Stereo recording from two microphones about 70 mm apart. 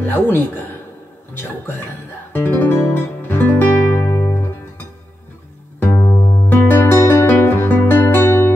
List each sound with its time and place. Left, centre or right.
0.0 s speech: left
2.3 s guitar: left
5.8 s music: left
6.7 s music: left